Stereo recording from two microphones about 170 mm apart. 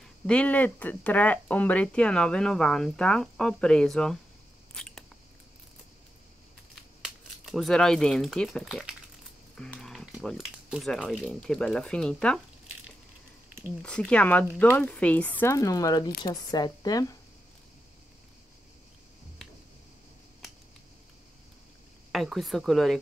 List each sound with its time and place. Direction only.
0.0 s speech: 5° left (ahead or behind)
4.7 s a sound: 5° left (ahead or behind)
6.7 s speech: centre (ahead or behind)
13.8 s speech: 5° left (ahead or behind); by 17.2 s 20° left (ahead or behind)
22.1 s speech: centre (ahead or behind)